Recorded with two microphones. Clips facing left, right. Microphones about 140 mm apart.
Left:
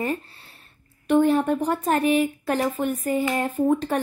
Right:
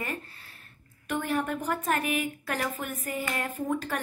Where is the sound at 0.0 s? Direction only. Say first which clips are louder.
Left 9 dB; 30° left (ahead or behind).